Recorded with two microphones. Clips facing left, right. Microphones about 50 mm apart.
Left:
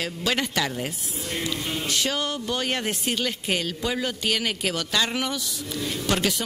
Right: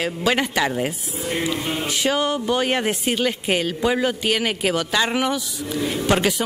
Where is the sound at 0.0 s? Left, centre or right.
Centre.